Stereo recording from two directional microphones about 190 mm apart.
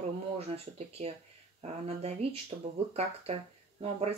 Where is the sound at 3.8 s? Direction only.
30° right (ahead or behind).